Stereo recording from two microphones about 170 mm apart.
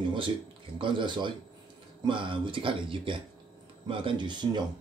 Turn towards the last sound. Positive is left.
turn(degrees=-25)  # may be behind; listen again after turning